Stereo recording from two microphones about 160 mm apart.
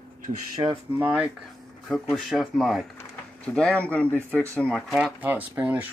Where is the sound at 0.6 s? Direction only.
25° right (ahead or behind).